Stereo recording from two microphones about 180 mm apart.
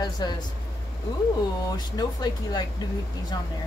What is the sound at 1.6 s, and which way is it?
Speech, 20° left (ahead or behind).